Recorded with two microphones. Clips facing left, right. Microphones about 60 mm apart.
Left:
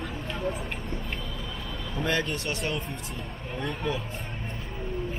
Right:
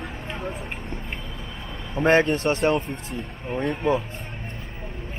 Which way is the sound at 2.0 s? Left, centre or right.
Right.